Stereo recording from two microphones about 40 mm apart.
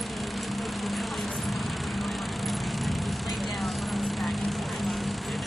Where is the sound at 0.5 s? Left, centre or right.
Centre.